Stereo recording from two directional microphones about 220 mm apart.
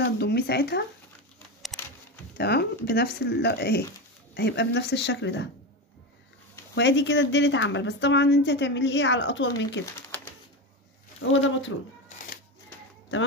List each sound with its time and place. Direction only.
0.2 s a woman's voice: 50° left (ahead or behind)
1.7 s a sound: centre (ahead or behind)
2.3 s a woman's voice: 45° left (ahead or behind)
6.7 s a woman's voice: 50° left (ahead or behind)
11.1 s speech: 60° left (ahead or behind)